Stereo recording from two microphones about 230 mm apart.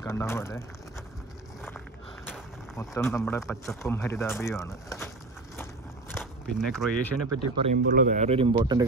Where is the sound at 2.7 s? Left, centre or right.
Centre.